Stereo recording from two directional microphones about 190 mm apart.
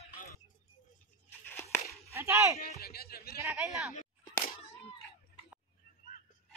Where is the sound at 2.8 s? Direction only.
55° left (ahead or behind).